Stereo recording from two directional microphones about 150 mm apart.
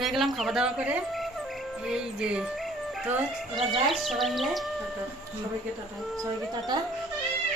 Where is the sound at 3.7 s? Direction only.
Centre (ahead or behind).